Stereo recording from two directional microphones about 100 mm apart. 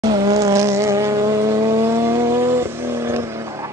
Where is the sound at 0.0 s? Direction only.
45° right (ahead or behind); by 2.6 s 25° right (ahead or behind).